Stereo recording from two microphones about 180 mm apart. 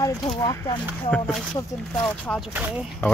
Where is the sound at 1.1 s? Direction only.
5° left (ahead or behind).